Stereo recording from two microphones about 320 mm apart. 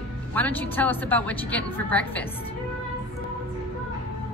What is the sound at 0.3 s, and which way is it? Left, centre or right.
A woman's voice, centre.